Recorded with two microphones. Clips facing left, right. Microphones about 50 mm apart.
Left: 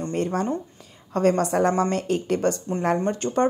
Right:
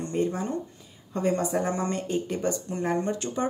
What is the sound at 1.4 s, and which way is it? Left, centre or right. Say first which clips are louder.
A woman's voice: left 6 dB; left.